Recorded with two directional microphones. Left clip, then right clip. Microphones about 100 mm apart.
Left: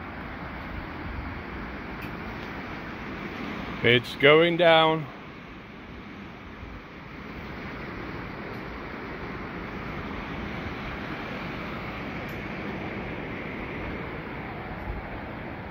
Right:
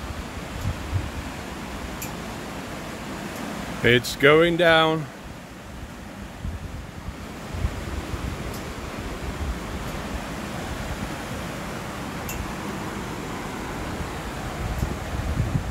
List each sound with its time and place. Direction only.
3.8 s speech: 30° right (ahead or behind)